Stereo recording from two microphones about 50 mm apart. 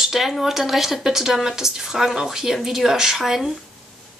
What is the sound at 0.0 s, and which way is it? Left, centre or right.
A woman's voice, centre.